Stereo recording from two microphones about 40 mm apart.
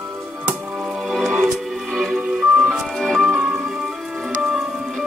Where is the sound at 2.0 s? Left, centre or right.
Centre.